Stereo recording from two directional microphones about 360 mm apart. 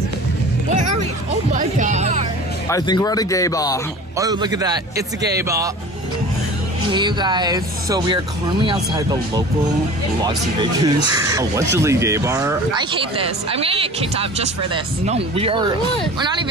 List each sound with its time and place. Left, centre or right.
1.5 s music: right
2.7 s speech: centre
4.2 s speech: centre
6.9 s speech: centre
10.8 s speech: centre